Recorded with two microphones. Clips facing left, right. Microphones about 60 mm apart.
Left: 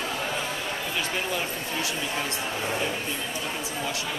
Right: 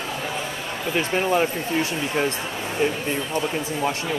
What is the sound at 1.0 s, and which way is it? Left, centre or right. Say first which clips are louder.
Speech: right 11 dB; right.